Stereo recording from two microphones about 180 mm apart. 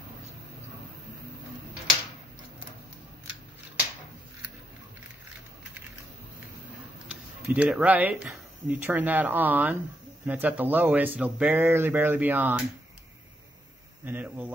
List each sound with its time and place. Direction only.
7.1 s speech: 10° right (ahead or behind)
14.0 s speech: 10° right (ahead or behind)